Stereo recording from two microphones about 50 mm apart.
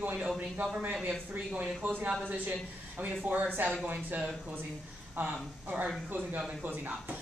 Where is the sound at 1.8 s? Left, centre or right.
Right.